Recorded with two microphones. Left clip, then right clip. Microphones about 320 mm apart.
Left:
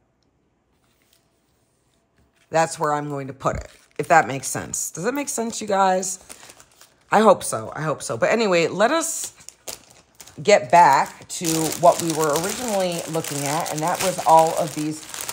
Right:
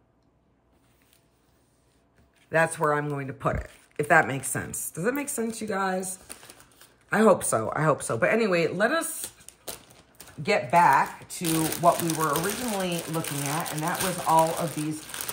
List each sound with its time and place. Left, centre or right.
2.5 s speech: centre
7.1 s speech: centre
7.3 s speech: centre; by 15.1 s left